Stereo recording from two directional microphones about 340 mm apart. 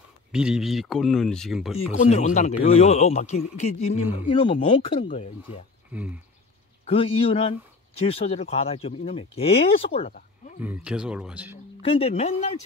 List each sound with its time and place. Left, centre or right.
0.3 s speech: centre
1.9 s a man's voice: centre
5.9 s speech: centre
6.9 s speech: centre
10.6 s speech: centre
11.8 s a man's voice: centre